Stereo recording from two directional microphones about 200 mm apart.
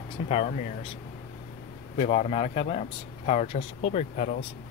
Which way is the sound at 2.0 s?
30° left (ahead or behind).